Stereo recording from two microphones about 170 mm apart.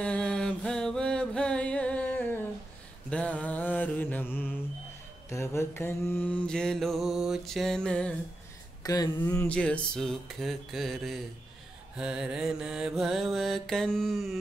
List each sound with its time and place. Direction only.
0.0 s music: 5° left (ahead or behind)
3.1 s mantra: 5° left (ahead or behind)
8.8 s speech: 20° left (ahead or behind)
9.2 s a sound: 15° left (ahead or behind)
9.6 s mantra: 5° left (ahead or behind)